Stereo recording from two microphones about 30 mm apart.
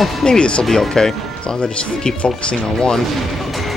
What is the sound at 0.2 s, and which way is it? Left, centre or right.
Speech, left.